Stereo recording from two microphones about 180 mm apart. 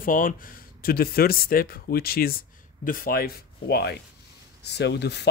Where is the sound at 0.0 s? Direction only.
50° left (ahead or behind).